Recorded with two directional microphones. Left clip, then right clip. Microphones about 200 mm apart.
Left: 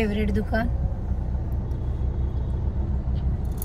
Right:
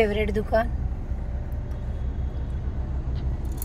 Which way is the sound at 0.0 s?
30° right (ahead or behind).